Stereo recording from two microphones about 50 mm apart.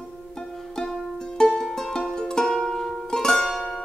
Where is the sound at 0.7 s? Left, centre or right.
Centre.